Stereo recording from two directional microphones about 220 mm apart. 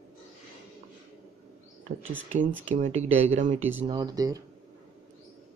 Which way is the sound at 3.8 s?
20° right (ahead or behind).